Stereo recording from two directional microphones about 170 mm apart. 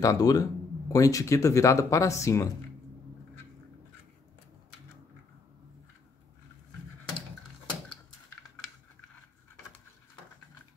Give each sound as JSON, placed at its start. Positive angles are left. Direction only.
{"t": 0.0, "sound": "speech", "side_deg": 20}